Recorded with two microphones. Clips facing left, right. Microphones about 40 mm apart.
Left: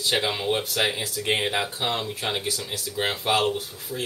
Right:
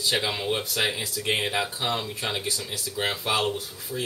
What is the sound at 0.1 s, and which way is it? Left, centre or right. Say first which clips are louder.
Speech: left 3 dB; centre.